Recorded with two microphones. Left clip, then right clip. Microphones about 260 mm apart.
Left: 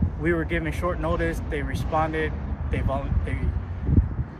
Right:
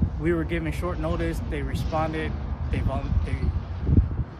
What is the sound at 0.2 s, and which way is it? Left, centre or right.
Speech, centre.